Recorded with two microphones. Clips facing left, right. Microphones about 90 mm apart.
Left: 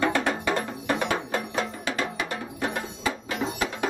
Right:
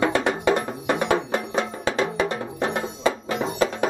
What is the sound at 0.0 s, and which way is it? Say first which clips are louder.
Music: right 4 dB; 20° right (ahead or behind).